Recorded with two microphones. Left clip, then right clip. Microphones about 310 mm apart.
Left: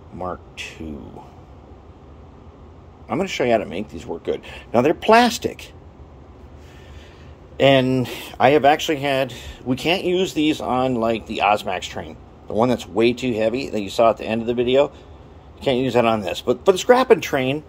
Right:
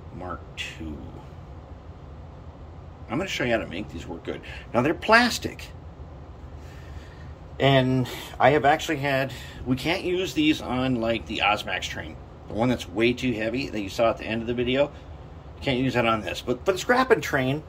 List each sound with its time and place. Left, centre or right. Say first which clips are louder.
0.2 s speech: left 5 dB; centre
3.1 s a man's voice: left 6 dB; centre
7.5 s a man's voice: left 6 dB; left